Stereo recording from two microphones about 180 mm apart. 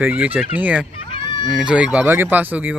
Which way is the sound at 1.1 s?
30° left (ahead or behind).